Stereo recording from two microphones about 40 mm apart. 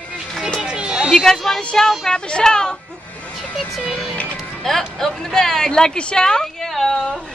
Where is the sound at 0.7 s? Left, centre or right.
Right.